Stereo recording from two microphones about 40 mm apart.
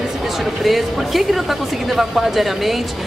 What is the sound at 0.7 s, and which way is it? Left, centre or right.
Speech, centre.